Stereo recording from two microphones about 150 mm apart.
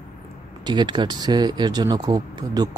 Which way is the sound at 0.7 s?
30° right (ahead or behind).